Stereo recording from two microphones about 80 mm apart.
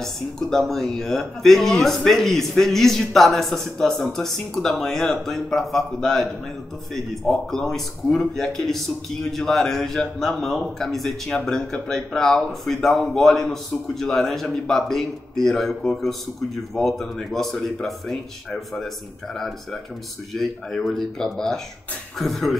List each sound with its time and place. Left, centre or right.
0.0 s a man's voice: centre
16.7 s a man's voice: centre
19.3 s a man's voice: centre